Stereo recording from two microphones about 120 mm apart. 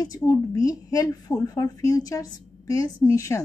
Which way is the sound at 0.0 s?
35° left (ahead or behind).